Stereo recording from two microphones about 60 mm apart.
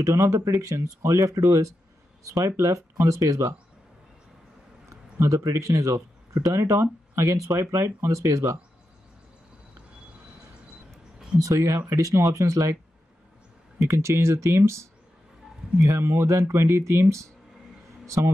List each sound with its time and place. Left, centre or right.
0.0 s speech: right
4.8 s a man's voice: right
11.3 s speech: right
13.8 s speech: right
16.0 s a man's voice: right